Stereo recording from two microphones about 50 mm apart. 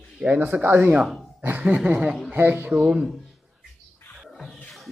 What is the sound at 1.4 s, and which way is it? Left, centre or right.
Speech, right.